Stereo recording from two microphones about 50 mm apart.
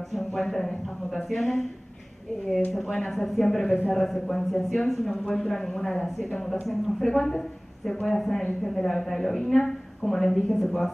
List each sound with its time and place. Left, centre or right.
0.1 s speech: centre
2.7 s a woman's voice: centre